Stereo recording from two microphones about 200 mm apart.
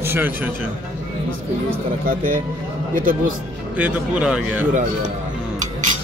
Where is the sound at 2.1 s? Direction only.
45° right (ahead or behind).